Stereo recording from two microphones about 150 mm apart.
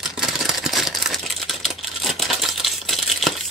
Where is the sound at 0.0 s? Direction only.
5° right (ahead or behind).